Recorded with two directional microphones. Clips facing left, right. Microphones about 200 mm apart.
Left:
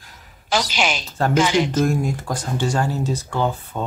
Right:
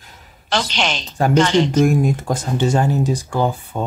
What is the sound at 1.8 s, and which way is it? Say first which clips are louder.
Speech: right 5 dB; 20° right (ahead or behind).